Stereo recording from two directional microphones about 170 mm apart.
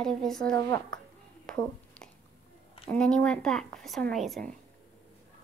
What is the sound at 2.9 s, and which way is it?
Speech, 5° left (ahead or behind).